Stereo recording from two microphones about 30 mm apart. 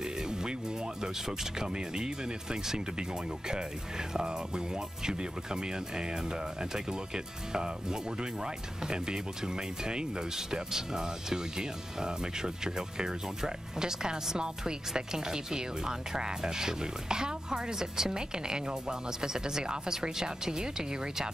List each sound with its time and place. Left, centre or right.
0.3 s music: right
1.6 s speech: right